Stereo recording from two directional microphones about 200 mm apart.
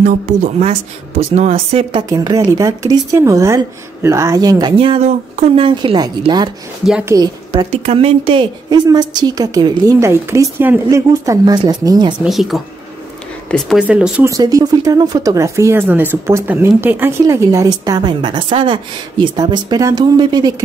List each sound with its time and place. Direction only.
0.0 s a woman's voice: 40° right (ahead or behind); by 6.5 s 20° right (ahead or behind)
6.9 s speech: 5° right (ahead or behind)
7.2 s a woman's voice: 25° right (ahead or behind)
12.2 s speech: centre (ahead or behind)
14.3 s speech: 20° right (ahead or behind)